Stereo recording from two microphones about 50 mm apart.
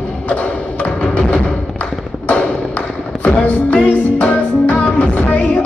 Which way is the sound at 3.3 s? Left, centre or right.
Left.